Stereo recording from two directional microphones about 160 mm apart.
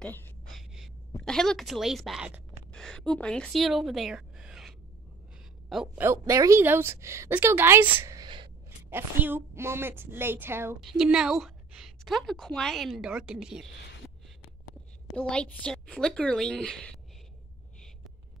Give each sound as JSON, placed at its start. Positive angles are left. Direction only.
{"t": 0.0, "sound": "speech", "side_deg": 10}
{"t": 0.5, "sound": "a woman's voice", "side_deg": 0}
{"t": 6.2, "sound": "a woman's voice", "side_deg": -20}
{"t": 8.6, "sound": "a woman's voice", "side_deg": -15}
{"t": 10.8, "sound": "a woman's voice", "side_deg": 0}
{"t": 15.1, "sound": "a woman's voice", "side_deg": 5}